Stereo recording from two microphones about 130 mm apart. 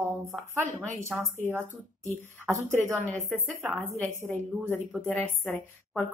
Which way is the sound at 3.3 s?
20° right (ahead or behind).